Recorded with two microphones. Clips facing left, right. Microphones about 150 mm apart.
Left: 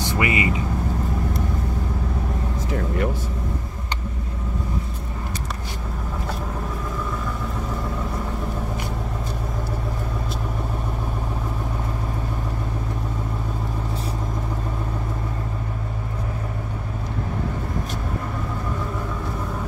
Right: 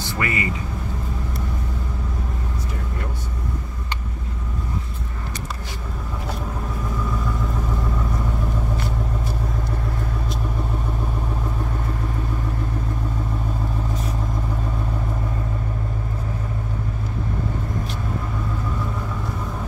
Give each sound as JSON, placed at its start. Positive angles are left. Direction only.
{"t": 0.0, "sound": "speech", "side_deg": 20}